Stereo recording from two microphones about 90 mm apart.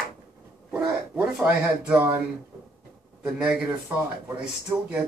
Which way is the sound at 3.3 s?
5° right (ahead or behind).